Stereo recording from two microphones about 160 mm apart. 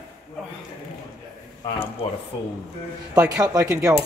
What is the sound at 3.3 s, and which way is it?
Speech, 20° right (ahead or behind).